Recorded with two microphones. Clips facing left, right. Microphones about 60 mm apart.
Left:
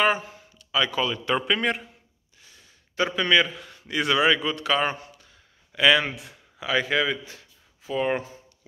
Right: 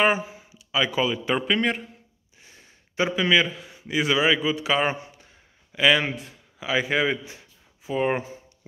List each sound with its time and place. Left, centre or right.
0.0 s speech: centre
3.1 s a man's voice: centre
4.9 s a sound: right
5.7 s speech: centre
6.7 s a man's voice: centre